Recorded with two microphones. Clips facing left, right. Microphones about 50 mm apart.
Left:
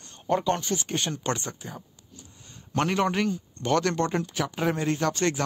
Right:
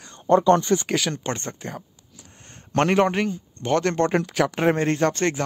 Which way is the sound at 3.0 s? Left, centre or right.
Right.